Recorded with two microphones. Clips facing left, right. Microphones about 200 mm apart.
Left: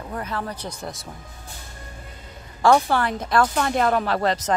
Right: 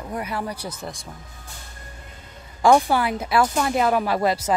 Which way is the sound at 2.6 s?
10° right (ahead or behind).